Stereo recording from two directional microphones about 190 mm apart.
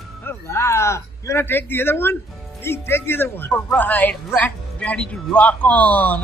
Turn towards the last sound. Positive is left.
turn(degrees=10)  # may be behind; listen again after turning